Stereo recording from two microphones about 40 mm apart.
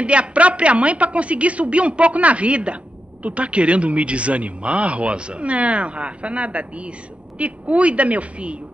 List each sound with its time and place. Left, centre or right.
0.0 s a woman's voice: right